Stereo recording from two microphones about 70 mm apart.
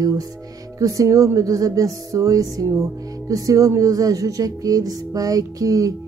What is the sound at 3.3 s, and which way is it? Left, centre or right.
Music, right.